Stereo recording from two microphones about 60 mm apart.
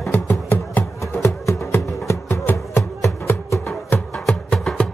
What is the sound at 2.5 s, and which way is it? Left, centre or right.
Music, left.